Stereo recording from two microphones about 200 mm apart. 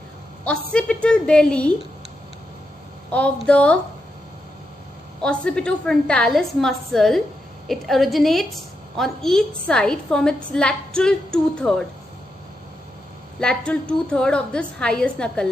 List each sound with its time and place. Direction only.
0.4 s a woman's voice: 5° left (ahead or behind)
3.1 s speech: 5° left (ahead or behind)
5.2 s a woman's voice: 5° left (ahead or behind)
13.4 s a woman's voice: 5° left (ahead or behind)